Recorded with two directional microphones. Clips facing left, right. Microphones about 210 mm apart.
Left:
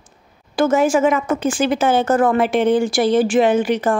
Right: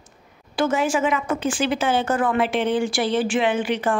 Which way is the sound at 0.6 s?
45° left (ahead or behind).